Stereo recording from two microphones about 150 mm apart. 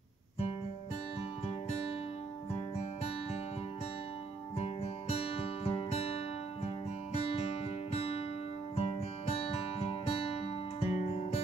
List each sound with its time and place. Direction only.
4.6 s music: 40° left (ahead or behind)